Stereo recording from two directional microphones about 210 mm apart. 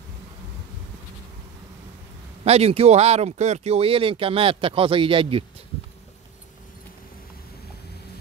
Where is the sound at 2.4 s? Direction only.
30° right (ahead or behind).